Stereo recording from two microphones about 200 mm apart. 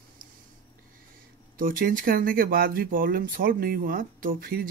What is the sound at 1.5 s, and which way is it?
Speech, 45° right (ahead or behind).